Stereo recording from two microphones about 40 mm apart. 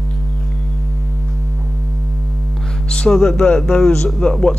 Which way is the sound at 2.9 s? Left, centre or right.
Centre.